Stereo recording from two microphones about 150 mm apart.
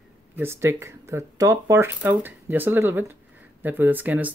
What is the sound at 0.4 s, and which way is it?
Speech, 15° right (ahead or behind).